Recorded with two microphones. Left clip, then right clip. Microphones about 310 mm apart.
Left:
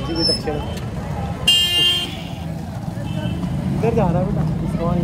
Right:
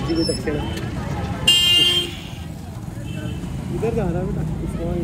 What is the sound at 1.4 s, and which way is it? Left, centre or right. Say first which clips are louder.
Vehicle: right 1 dB; left.